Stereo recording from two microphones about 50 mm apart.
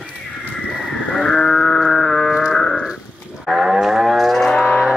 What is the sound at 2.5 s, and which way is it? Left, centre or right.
Livestock, centre.